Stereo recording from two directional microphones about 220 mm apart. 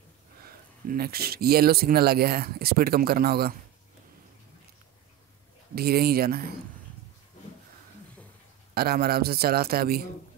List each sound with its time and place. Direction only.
0.8 s speech: 45° right (ahead or behind)
5.8 s speech: 45° right (ahead or behind)
8.7 s speech: 45° right (ahead or behind)